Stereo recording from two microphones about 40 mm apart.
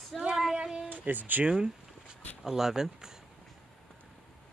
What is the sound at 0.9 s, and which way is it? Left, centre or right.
Speech, right.